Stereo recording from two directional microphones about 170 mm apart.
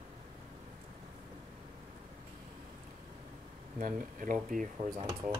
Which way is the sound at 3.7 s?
50° right (ahead or behind).